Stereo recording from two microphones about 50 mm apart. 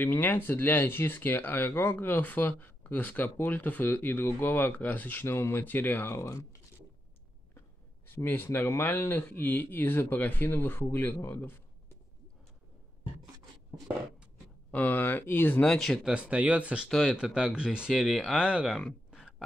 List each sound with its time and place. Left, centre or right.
0.0 s speech: left
5.6 s speech: left
6.1 s speech: left
8.1 s speech: left
14.7 s speech: left
15.6 s speech: centre
16.1 s speech: right